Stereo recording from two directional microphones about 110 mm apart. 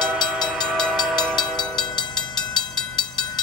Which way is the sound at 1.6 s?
40° left (ahead or behind).